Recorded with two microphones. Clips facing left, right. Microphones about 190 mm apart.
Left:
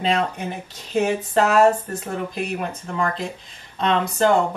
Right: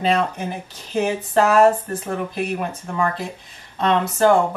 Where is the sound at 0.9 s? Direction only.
10° right (ahead or behind).